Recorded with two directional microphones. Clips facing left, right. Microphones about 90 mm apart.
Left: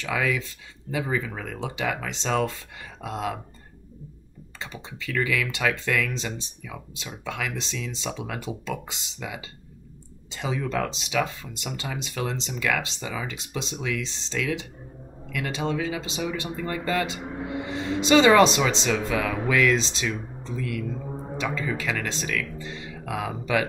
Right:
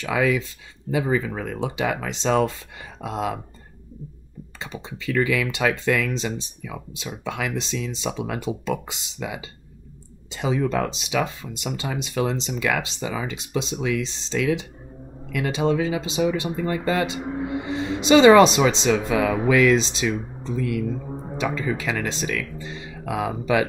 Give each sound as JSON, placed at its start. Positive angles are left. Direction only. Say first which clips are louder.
{"t": 0.0, "sound": "speech", "louder": "right 5 dB", "side_deg": -20}
{"t": 4.6, "sound": "speech", "louder": "right 3 dB", "side_deg": -20}
{"t": 21.4, "sound": "speech", "louder": "right 4 dB", "side_deg": -20}